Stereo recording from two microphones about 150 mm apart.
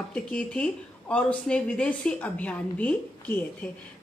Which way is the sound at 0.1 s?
10° left (ahead or behind).